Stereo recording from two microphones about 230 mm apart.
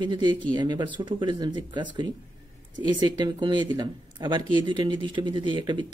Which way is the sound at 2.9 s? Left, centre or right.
Centre.